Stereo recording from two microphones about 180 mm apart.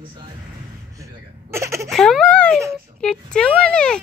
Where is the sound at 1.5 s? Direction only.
15° right (ahead or behind).